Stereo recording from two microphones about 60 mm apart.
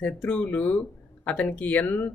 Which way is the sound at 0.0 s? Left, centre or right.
Left.